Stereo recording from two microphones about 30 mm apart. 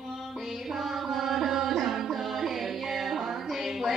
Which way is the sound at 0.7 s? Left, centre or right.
Centre.